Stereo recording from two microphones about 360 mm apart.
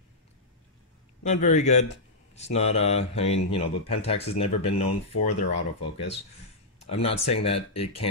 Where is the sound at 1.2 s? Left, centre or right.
Centre.